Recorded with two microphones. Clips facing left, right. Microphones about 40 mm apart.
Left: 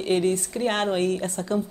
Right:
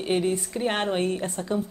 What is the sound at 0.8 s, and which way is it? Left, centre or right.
Speech, centre.